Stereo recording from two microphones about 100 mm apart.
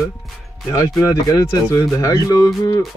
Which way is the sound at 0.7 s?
35° left (ahead or behind).